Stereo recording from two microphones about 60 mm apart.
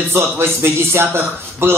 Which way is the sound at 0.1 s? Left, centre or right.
Right.